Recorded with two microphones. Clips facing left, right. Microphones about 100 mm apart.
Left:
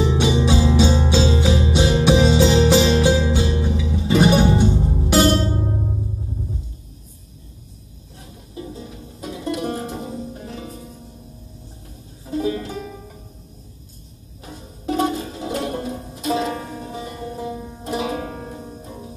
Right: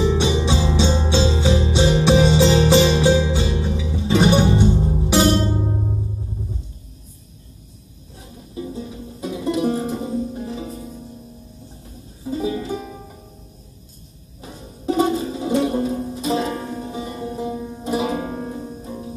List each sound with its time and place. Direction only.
0.0 s music: centre (ahead or behind)
8.5 s music: 5° right (ahead or behind)
12.3 s music: 5° right (ahead or behind)
14.4 s music: centre (ahead or behind)